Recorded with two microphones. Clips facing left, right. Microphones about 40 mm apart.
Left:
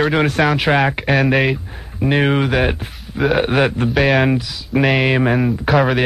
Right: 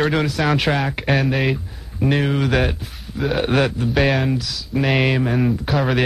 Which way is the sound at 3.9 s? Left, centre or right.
Centre.